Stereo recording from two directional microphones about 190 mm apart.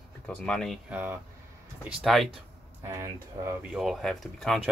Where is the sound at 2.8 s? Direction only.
15° right (ahead or behind).